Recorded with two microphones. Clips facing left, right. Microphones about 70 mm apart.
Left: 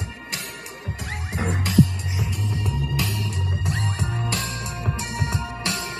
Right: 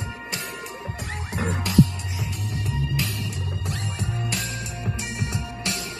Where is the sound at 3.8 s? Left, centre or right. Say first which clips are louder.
Left 3 dB; left.